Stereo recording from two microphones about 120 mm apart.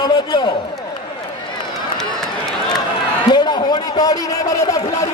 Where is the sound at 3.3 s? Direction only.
35° left (ahead or behind).